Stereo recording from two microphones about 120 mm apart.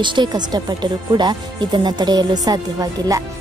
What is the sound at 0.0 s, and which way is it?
Speech, 40° right (ahead or behind).